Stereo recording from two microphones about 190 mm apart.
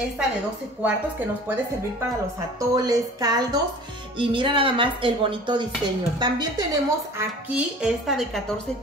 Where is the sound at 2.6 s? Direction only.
20° right (ahead or behind).